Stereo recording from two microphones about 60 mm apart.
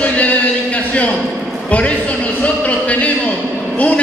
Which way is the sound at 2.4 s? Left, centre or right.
Left.